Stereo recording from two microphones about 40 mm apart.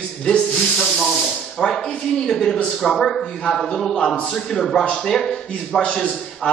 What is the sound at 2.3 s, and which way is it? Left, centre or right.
A man's voice, centre.